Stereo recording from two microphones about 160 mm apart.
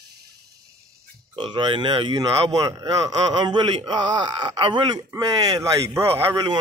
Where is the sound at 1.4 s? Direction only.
30° right (ahead or behind).